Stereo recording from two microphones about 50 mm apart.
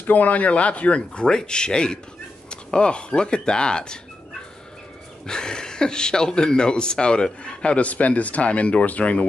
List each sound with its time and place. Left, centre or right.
0.0 s speech: left; by 4.0 s centre
5.2 s speech: centre; by 9.2 s left